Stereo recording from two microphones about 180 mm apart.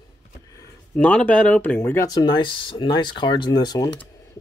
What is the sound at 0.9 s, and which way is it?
Speech, 5° left (ahead or behind).